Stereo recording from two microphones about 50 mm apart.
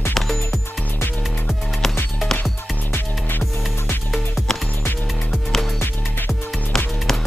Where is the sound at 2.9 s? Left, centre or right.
Left.